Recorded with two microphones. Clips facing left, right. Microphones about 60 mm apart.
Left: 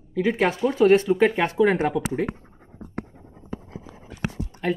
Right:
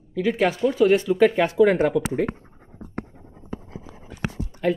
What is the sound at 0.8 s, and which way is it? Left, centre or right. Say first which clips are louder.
Speech: left 1 dB; left.